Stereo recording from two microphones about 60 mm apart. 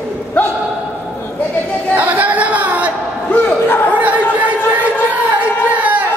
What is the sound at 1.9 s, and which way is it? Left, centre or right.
Chatter, right.